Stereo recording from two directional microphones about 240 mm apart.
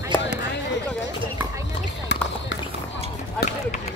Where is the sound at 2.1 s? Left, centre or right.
Left.